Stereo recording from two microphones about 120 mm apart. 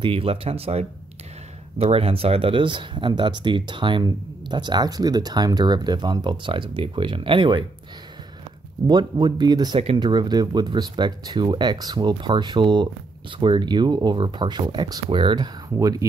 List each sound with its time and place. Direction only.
0.0 s speech: 50° right (ahead or behind)
8.8 s speech: 40° right (ahead or behind)